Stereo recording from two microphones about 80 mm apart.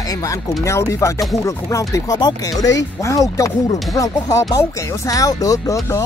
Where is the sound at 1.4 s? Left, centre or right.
Left.